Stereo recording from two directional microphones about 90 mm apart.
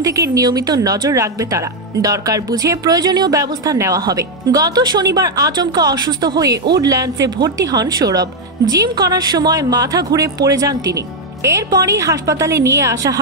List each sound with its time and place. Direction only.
0.0 s speech: 40° right (ahead or behind)